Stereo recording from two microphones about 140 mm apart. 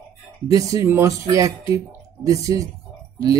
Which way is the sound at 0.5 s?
25° right (ahead or behind).